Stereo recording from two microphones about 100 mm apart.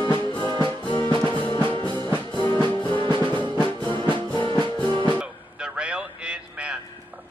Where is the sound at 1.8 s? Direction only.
50° right (ahead or behind).